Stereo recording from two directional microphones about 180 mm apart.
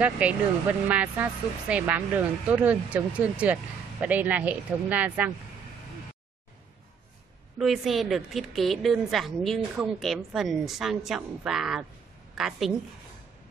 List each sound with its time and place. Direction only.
0.0 s speech: 5° right (ahead or behind)
7.5 s a woman's voice: centre (ahead or behind)